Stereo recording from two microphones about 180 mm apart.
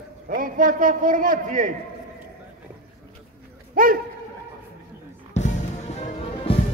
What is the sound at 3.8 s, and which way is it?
Speech, 50° right (ahead or behind).